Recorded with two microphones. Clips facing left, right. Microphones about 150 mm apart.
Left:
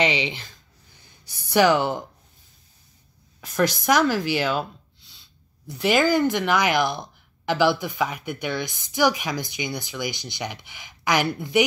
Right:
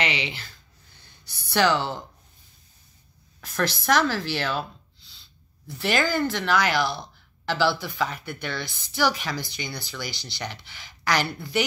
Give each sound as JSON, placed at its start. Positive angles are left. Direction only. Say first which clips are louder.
{"t": 1.5, "sound": "speech", "louder": "left 4 dB", "side_deg": 15}
{"t": 3.3, "sound": "speech", "louder": "left 5 dB", "side_deg": 15}
{"t": 5.7, "sound": "speech", "louder": "left 5 dB", "side_deg": 15}